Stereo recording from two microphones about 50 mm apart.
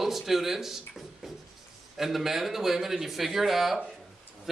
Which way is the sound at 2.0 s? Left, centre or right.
Centre.